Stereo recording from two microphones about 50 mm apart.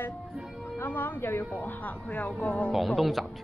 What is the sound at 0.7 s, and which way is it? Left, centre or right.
Speech, left.